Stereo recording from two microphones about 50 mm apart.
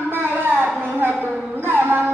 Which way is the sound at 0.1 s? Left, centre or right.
Right.